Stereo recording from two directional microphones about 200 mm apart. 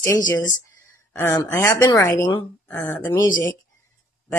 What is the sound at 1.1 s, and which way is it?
Speech, 15° left (ahead or behind).